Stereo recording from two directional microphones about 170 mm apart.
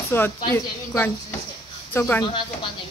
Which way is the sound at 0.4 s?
20° left (ahead or behind).